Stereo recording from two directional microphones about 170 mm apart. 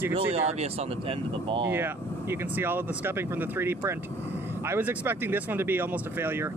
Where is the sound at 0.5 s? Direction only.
35° right (ahead or behind).